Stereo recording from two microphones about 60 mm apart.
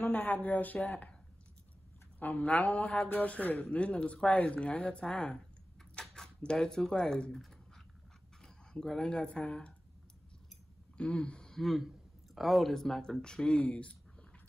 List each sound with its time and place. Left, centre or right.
0.0 s a man's voice: left
2.1 s a man's voice: left
11.0 s speech: centre
11.4 s speech: centre